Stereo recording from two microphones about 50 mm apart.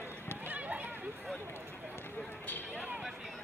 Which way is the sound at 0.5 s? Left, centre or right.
Right.